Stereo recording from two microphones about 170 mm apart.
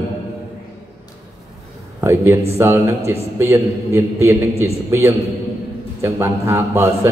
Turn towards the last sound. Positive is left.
turn(degrees=-15)  # may be behind; listen again after turning